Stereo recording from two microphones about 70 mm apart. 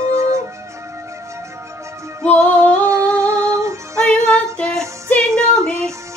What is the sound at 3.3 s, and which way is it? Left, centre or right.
Music, right.